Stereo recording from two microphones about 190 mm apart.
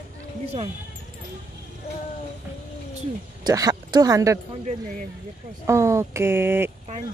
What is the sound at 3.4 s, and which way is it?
Speech, 20° right (ahead or behind).